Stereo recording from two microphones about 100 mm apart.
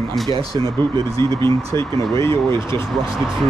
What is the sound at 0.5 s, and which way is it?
Speech, 55° right (ahead or behind).